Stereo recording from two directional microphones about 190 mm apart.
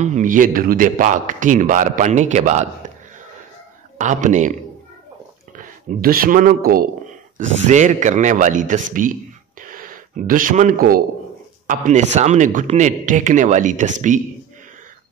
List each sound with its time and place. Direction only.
0.0 s a man's voice: 40° right (ahead or behind)
4.0 s speech: 40° right (ahead or behind)
5.6 s a man's voice: 50° right (ahead or behind)